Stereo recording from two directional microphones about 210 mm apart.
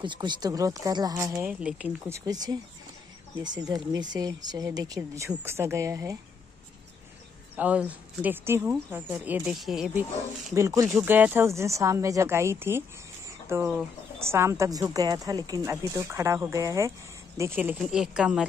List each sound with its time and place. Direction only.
0.0 s a woman's voice: 20° right (ahead or behind)
3.6 s a woman's voice: 20° right (ahead or behind)
7.5 s a woman's voice: 5° right (ahead or behind)
10.5 s a woman's voice: 15° right (ahead or behind)